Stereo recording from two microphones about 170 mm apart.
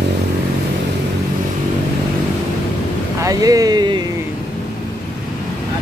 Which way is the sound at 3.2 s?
20° right (ahead or behind).